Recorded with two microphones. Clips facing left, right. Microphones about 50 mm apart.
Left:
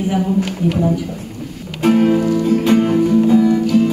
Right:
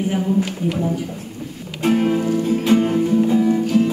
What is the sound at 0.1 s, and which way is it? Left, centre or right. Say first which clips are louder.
Speech: left 2 dB; left.